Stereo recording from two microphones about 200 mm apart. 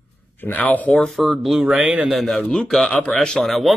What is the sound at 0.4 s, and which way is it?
Speech, 10° left (ahead or behind).